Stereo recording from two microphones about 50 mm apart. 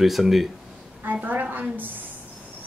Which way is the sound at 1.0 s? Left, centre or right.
Right.